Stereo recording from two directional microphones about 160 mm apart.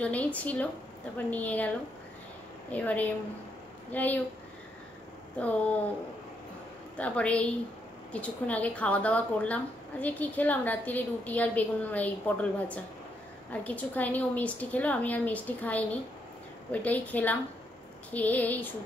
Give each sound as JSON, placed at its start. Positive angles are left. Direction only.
{"t": 0.0, "sound": "speech", "side_deg": 10}
{"t": 2.7, "sound": "speech", "side_deg": 10}
{"t": 5.4, "sound": "speech", "side_deg": 10}
{"t": 7.0, "sound": "speech", "side_deg": 10}